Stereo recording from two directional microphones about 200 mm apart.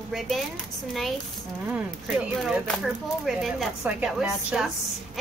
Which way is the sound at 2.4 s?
Centre (ahead or behind).